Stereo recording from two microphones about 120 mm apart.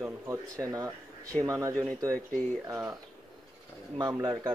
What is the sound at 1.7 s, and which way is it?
Speech, 10° left (ahead or behind).